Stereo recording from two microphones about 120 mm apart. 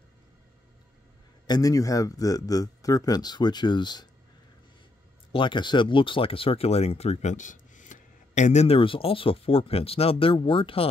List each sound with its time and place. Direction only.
1.5 s speech: 30° left (ahead or behind)
5.3 s speech: 40° left (ahead or behind); by 8.7 s 75° left (ahead or behind)
8.7 s speech: 50° left (ahead or behind)